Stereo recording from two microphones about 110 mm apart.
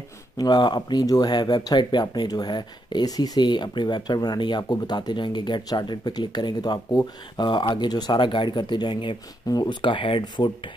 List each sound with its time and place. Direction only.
0.4 s speech: 40° left (ahead or behind)